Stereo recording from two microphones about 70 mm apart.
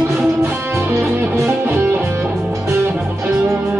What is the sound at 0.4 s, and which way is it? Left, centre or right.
Guitar, right.